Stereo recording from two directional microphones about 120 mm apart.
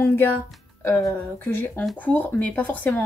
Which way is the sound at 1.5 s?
15° left (ahead or behind).